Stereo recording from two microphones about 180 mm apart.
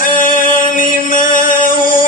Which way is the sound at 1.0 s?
50° left (ahead or behind).